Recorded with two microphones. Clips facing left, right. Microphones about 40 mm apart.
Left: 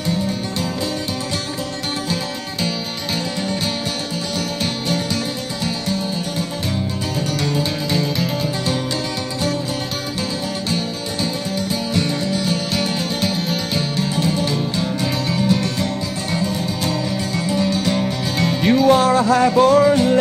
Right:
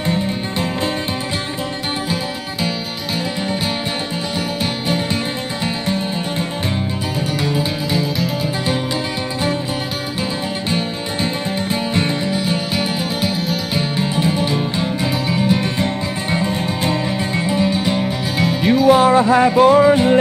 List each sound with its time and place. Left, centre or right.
7.4 s music: centre
11.7 s music: right